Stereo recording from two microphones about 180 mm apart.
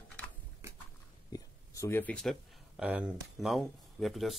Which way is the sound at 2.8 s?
5° right (ahead or behind).